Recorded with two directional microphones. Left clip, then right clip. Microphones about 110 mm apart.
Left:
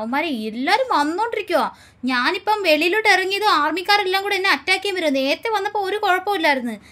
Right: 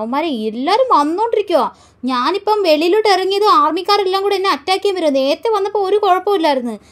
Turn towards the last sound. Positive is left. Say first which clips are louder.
# right 4 dB
turn(degrees=-20)  # may be behind; listen again after turning